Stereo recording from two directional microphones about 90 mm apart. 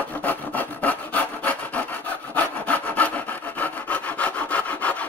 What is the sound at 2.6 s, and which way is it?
Sawing, 15° left (ahead or behind).